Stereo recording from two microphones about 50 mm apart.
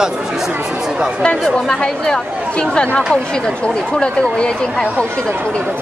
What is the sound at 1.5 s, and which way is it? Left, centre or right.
Speech, centre.